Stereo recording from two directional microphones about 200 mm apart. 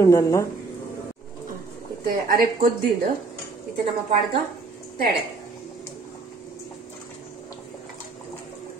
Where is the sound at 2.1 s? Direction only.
45° right (ahead or behind).